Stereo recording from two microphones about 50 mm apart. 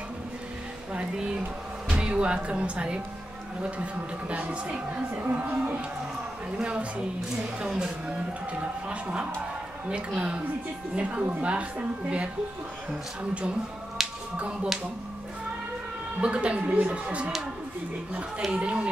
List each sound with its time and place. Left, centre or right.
1.9 s speech: centre
5.2 s speech: right
6.6 s speech: right
16.2 s speech: right
18.5 s speech: right